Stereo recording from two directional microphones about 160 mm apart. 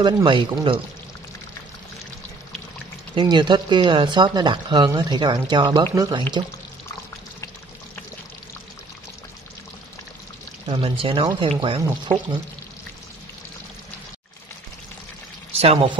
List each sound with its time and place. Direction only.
0.0 s speech: 30° right (ahead or behind)
3.2 s speech: 30° right (ahead or behind)
10.7 s speech: 35° right (ahead or behind)
15.5 s speech: 40° right (ahead or behind)